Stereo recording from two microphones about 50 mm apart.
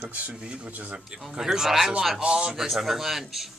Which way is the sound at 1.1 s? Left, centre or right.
Centre.